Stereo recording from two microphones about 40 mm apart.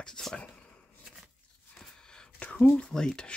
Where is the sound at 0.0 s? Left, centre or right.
Centre.